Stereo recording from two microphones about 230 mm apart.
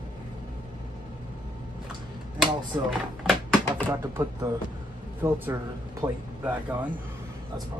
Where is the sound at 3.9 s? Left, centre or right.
Centre.